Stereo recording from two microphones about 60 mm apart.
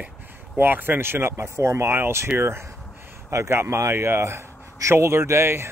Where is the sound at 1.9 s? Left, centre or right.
Right.